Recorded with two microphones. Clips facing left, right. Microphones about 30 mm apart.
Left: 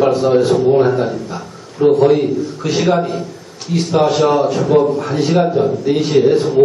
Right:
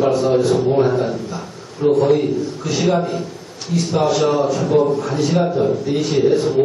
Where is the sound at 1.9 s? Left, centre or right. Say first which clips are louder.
Left 2 dB; left.